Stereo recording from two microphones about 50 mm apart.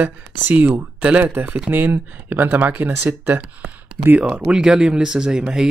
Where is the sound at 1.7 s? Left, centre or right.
Right.